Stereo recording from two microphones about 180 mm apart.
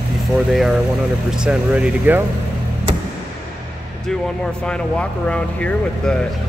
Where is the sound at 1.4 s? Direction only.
5° right (ahead or behind).